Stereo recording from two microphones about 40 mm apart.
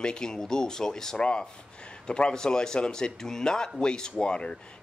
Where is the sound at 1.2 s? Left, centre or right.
Left.